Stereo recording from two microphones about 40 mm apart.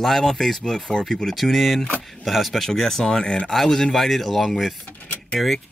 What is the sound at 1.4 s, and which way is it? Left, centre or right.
Speech, centre.